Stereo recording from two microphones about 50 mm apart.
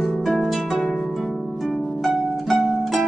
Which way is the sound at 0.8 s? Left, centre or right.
Centre.